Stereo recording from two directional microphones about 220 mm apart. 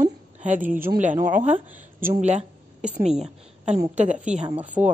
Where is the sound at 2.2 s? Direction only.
30° right (ahead or behind).